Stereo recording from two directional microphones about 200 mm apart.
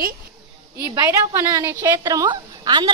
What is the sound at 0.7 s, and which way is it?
A woman's voice, 15° right (ahead or behind).